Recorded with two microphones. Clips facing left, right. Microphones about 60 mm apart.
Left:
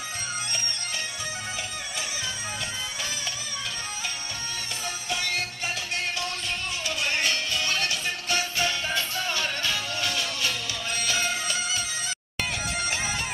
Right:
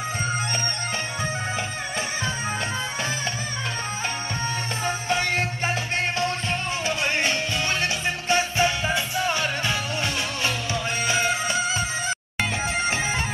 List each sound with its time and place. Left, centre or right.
4.8 s music: right